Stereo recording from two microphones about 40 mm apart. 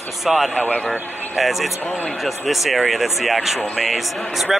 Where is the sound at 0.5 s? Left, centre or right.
Left.